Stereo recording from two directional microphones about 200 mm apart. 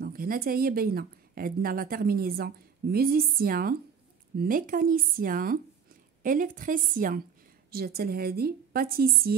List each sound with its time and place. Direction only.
0.0 s speech: 45° right (ahead or behind)